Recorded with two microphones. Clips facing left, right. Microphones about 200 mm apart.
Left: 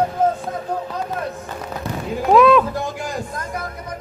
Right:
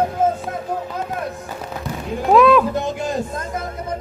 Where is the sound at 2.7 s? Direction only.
20° right (ahead or behind).